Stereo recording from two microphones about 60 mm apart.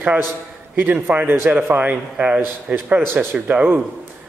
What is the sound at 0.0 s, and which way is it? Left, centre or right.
A man's voice, right.